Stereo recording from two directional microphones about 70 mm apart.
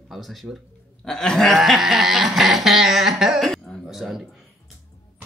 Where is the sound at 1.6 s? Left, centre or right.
Centre.